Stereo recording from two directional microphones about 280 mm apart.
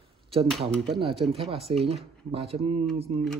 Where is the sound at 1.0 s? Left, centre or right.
Centre.